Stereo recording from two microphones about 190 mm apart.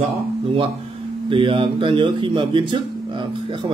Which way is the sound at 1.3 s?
25° right (ahead or behind).